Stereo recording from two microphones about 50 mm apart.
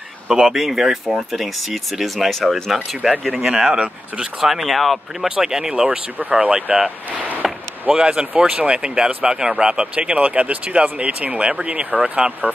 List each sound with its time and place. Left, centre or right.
0.3 s speech: centre
5.3 s speech: centre
6.4 s speech: right
7.4 s a sound: centre
7.9 s speech: centre